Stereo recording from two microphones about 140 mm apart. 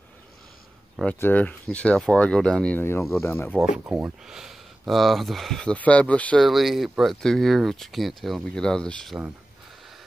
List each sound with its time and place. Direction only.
1.0 s speech: 10° left (ahead or behind)
3.8 s speech: 10° right (ahead or behind)